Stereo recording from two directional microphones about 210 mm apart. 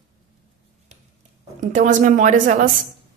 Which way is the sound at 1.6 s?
35° right (ahead or behind).